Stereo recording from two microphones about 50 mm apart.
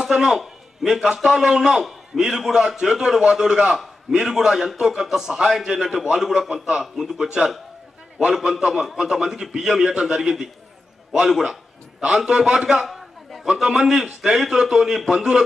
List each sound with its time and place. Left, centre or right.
0.0 s a man's voice: centre
8.5 s a man's voice: centre
13.5 s a man's voice: centre